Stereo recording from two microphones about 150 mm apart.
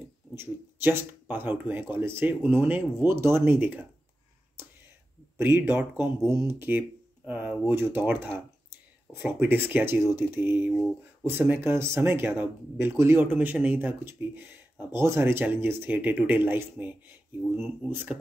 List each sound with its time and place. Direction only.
0.3 s speech: 15° right (ahead or behind)
5.4 s speech: 10° right (ahead or behind)